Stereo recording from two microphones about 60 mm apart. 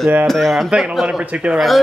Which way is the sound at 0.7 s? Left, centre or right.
Centre.